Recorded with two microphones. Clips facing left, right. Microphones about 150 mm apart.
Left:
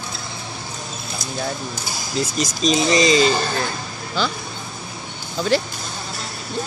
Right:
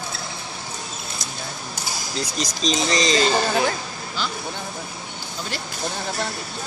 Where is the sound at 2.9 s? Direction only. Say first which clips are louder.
Left 4 dB; 5° left (ahead or behind).